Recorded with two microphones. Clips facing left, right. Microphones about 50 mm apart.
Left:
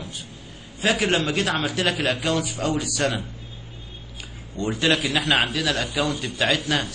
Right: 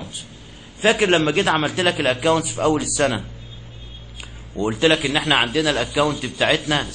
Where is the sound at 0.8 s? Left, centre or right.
Right.